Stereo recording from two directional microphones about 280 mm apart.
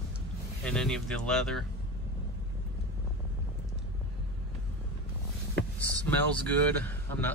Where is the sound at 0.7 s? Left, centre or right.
Centre.